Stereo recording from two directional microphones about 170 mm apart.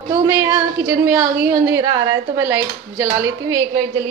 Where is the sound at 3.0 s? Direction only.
20° right (ahead or behind).